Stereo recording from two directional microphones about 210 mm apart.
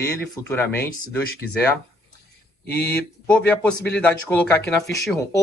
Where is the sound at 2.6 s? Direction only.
50° left (ahead or behind).